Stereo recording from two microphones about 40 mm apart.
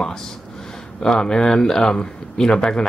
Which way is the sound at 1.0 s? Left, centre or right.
Centre.